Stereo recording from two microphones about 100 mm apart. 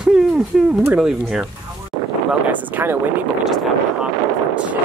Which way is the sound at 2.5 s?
15° right (ahead or behind).